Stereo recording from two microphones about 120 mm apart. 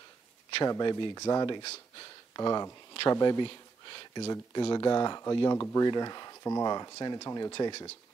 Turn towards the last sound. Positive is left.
turn(degrees=50)  # may be behind; listen again after turning